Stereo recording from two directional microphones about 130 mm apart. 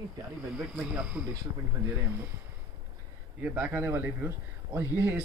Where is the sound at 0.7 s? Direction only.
10° right (ahead or behind).